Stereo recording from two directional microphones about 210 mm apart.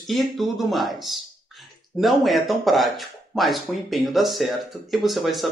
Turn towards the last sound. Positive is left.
turn(degrees=0)  # may be behind; listen again after turning